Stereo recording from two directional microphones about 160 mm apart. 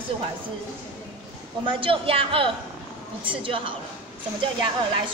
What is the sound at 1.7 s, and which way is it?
A woman's voice, 35° right (ahead or behind).